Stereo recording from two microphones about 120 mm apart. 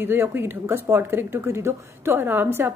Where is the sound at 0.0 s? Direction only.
20° right (ahead or behind).